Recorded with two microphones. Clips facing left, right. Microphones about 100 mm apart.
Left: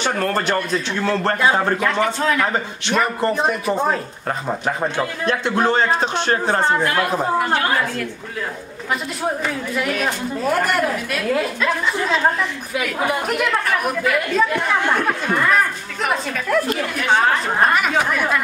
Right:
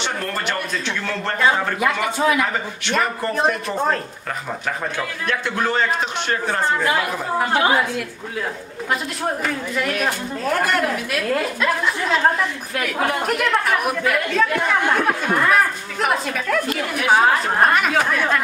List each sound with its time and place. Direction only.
0.3 s a man's voice: 35° left (ahead or behind)
1.8 s a man's voice: 10° right (ahead or behind)
2.4 s a man's voice: 25° left (ahead or behind)
3.3 s a woman's voice: centre (ahead or behind)
4.5 s a man's voice: 25° left (ahead or behind)
7.3 s a man's voice: 15° right (ahead or behind)
9.2 s a woman's voice: 5° left (ahead or behind)
14.3 s speech: 10° left (ahead or behind)
14.6 s a woman's voice: centre (ahead or behind)
16.9 s a woman's voice: 10° right (ahead or behind)